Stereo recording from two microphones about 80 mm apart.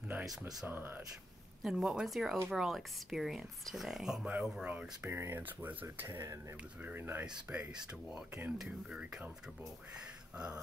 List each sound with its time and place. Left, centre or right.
0.7 s speech: right
1.6 s speech: centre
5.1 s speech: right
6.8 s speech: right
8.5 s speech: centre
10.3 s speech: centre